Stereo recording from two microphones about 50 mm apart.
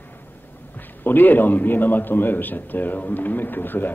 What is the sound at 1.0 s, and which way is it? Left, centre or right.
A man's voice, left.